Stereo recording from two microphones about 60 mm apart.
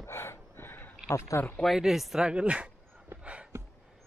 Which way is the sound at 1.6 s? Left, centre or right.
Centre.